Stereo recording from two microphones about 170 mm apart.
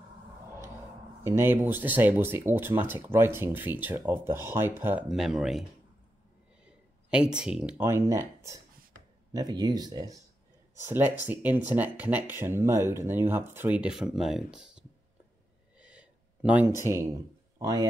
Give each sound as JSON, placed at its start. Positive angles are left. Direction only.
{"t": 1.2, "sound": "speech", "side_deg": -15}
{"t": 5.0, "sound": "speech", "side_deg": 0}
{"t": 6.6, "sound": "a sound", "side_deg": -5}
{"t": 7.8, "sound": "speech", "side_deg": -20}
{"t": 10.8, "sound": "speech", "side_deg": -10}
{"t": 15.8, "sound": "a sound", "side_deg": -5}
{"t": 17.6, "sound": "speech", "side_deg": -20}